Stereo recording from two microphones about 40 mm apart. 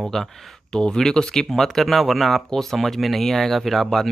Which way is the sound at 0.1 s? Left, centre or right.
Centre.